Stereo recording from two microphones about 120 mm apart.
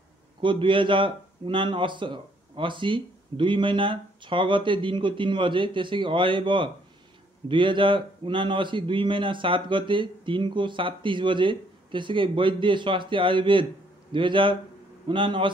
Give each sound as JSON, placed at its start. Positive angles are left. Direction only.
{"t": 0.4, "sound": "a man's voice", "side_deg": -45}